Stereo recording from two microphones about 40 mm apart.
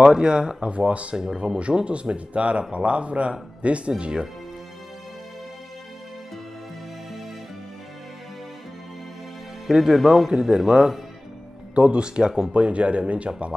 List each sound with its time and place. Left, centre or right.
0.0 s speech: centre
0.7 s speech: right
1.1 s speech: centre
9.7 s speech: centre
12.5 s speech: right